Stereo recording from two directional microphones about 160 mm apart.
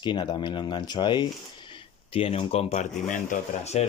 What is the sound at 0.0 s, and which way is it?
Speech, 30° left (ahead or behind).